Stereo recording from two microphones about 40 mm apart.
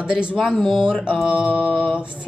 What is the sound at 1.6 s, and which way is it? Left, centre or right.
Music, centre.